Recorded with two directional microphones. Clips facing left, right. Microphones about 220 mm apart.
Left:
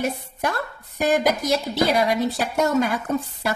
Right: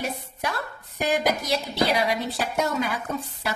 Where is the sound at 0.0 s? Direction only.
50° left (ahead or behind).